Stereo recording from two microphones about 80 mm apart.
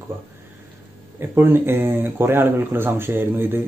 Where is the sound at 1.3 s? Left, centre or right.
Right.